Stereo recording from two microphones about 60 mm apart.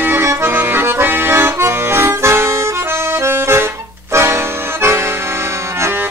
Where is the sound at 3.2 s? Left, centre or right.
Right.